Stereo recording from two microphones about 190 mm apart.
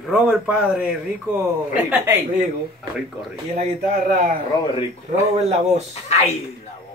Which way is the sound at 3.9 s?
45° right (ahead or behind).